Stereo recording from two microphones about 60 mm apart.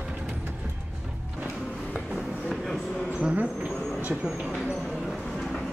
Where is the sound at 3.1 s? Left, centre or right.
Right.